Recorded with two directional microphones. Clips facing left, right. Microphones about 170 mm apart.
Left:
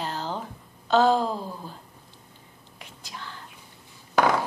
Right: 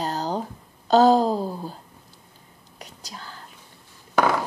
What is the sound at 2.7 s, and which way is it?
Whispering, 40° right (ahead or behind).